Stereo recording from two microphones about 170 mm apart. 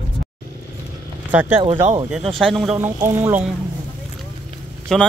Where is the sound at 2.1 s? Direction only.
Centre (ahead or behind).